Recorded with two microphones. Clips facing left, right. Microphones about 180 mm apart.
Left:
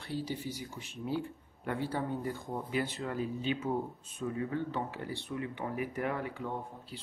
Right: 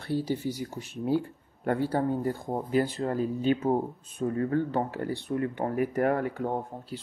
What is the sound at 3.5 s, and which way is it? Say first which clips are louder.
Speech: right 7 dB; 55° right (ahead or behind).